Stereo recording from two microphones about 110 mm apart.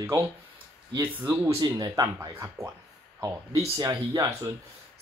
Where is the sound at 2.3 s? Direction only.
25° right (ahead or behind).